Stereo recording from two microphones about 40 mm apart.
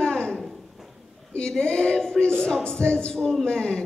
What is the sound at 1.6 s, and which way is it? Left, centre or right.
Female singing, left.